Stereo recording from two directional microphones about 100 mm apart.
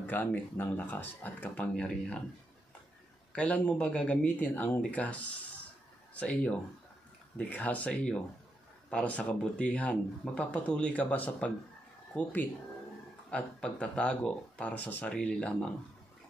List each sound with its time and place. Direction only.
0.0 s speech: 20° left (ahead or behind)
3.3 s speech: 15° left (ahead or behind)